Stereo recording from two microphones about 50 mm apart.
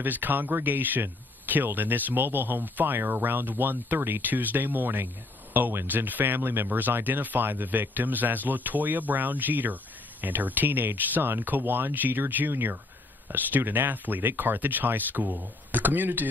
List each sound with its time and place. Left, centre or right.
0.0 s speech: right